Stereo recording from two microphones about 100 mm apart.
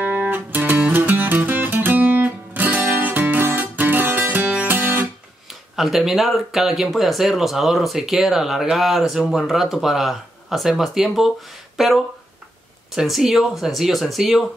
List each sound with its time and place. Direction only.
0.0 s music: 15° right (ahead or behind)
5.5 s speech: centre (ahead or behind)